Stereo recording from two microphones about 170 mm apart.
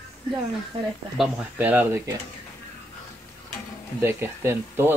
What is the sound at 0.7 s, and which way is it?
Speech, 35° right (ahead or behind).